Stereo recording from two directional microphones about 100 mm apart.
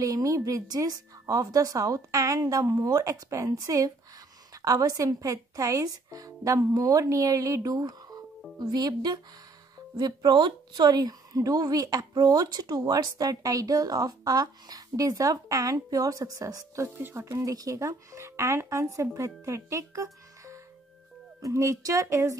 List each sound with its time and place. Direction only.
0.0 s a woman's voice: 35° right (ahead or behind)